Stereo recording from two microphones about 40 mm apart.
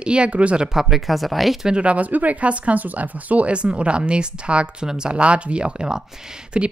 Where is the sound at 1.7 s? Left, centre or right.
Right.